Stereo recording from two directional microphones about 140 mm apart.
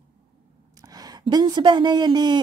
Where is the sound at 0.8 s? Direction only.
25° right (ahead or behind).